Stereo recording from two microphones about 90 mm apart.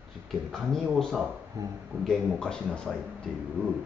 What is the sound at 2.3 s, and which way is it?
Speech, 5° left (ahead or behind).